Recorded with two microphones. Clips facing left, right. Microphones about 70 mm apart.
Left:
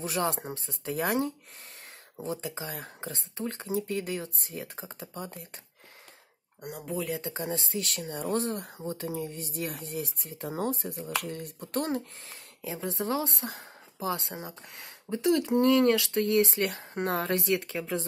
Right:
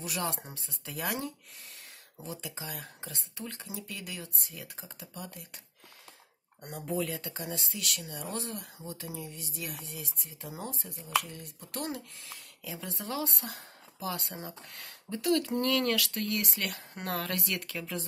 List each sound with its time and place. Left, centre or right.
0.0 s speech: left
6.6 s speech: centre
7.2 s speech: left